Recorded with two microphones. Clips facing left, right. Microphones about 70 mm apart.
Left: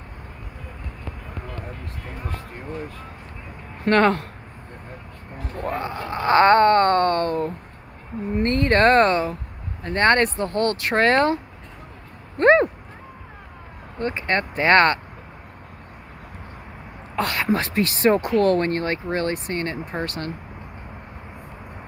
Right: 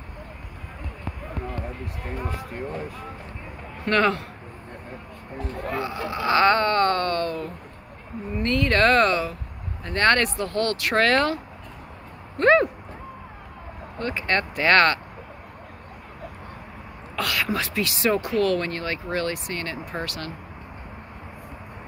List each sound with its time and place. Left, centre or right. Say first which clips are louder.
3.8 s speech: left 4 dB; left
5.6 s wail: left 2 dB; left
8.3 s speech: left 3 dB; left
12.4 s a sound: left 2 dB; left
13.9 s speech: left 2 dB; left
17.1 s speech: left 4 dB; left